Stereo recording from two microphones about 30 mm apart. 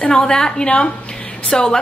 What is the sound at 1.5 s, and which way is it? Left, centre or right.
Speech, centre.